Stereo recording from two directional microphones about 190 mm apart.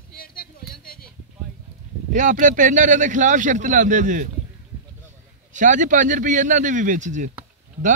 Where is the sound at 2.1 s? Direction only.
40° right (ahead or behind).